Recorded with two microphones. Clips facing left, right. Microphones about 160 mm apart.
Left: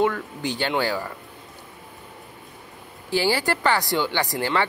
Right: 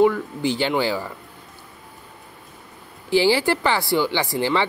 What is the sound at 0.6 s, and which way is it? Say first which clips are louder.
Speech: even; 15° right (ahead or behind).